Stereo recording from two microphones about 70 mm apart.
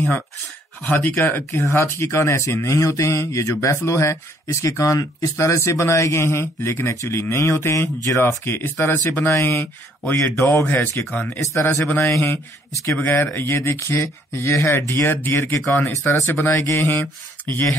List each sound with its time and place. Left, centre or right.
0.8 s speech: left
9.6 s speech: left
10.3 s speech: left
10.6 s speech: left
11.3 s speech: left
12.1 s speech: left
17.0 s speech: left